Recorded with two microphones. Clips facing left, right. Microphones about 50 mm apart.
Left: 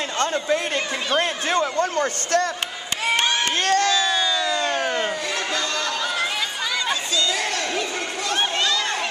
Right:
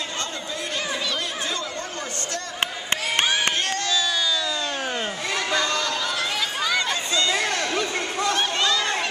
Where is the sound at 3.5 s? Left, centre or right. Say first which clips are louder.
Left 6 dB; left.